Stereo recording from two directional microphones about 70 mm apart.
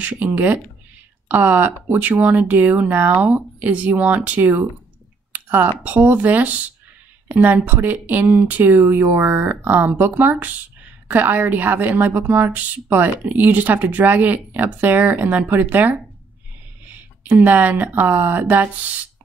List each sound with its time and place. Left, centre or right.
0.0 s a woman's voice: right